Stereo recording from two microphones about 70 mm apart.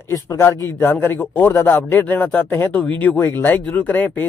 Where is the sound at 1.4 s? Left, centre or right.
Left.